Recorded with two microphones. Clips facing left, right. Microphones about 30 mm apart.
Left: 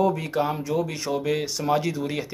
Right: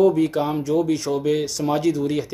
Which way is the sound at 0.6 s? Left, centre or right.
Centre.